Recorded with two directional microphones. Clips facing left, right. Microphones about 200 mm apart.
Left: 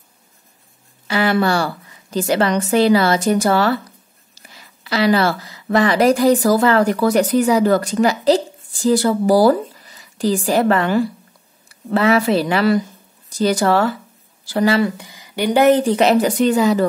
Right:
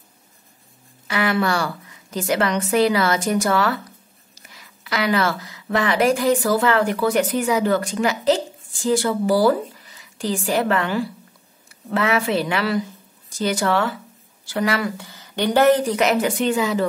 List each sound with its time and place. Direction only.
1.0 s a woman's voice: 30° left (ahead or behind)
15.0 s speech: 15° left (ahead or behind)
15.8 s a woman's voice: 30° left (ahead or behind)